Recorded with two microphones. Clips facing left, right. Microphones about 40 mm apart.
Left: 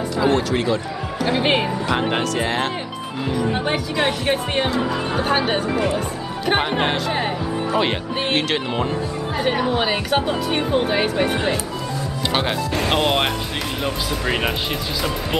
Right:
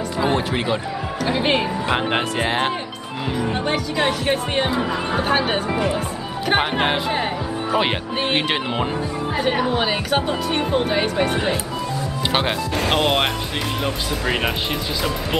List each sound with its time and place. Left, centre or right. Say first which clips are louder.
0.2 s speech: left 2 dB; right
1.2 s speech: left 1 dB; centre
1.9 s speech: right 1 dB; centre
3.5 s speech: even; centre
4.6 s speech: even; centre
8.2 s speech: even; centre
9.4 s speech: even; centre
12.3 s speech: even; centre